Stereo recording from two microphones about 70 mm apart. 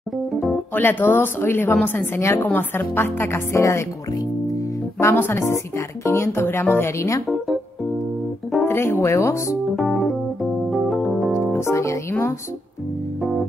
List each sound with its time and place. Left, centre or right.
0.7 s a woman's voice: left
3.5 s speech: left
5.0 s speech: left
8.6 s speech: left
10.7 s keyboard: centre
11.5 s speech: left